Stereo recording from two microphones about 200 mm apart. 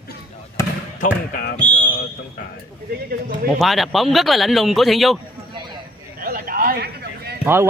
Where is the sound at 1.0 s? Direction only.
45° left (ahead or behind).